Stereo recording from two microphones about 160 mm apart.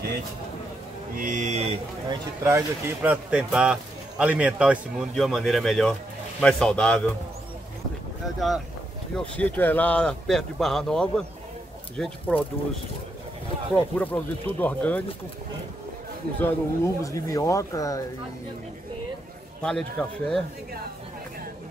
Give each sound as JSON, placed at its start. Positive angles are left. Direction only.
{"t": 1.1, "sound": "speech", "side_deg": -55}
{"t": 2.0, "sound": "a man's voice", "side_deg": -15}
{"t": 9.1, "sound": "speech", "side_deg": 10}
{"t": 13.9, "sound": "speech", "side_deg": 10}
{"t": 16.3, "sound": "speech", "side_deg": 15}
{"t": 19.6, "sound": "speech", "side_deg": 5}